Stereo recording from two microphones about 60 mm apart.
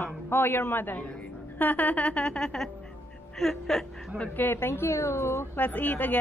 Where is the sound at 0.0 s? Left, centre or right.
Left; by 3.8 s centre.